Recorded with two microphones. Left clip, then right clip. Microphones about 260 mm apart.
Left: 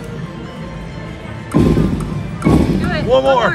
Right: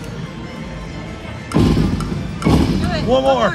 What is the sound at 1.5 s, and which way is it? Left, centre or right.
Music, centre.